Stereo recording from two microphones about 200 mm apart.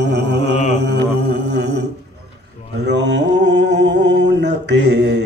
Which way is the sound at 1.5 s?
60° right (ahead or behind).